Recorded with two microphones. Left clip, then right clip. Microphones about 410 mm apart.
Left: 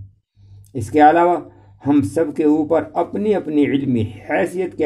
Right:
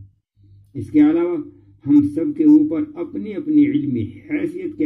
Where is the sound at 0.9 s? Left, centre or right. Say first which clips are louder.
Left 5 dB; left.